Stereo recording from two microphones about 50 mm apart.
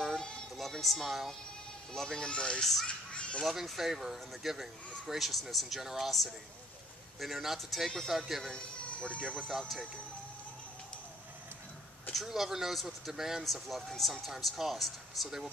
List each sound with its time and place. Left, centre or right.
0.0 s a sound: centre
0.6 s speech: centre
2.0 s speech: centre
2.2 s speech: left
2.6 s speech: centre
2.9 s a sound: left
3.4 s speech: centre
8.5 s speech: centre
9.5 s speech: centre
12.3 s speech: centre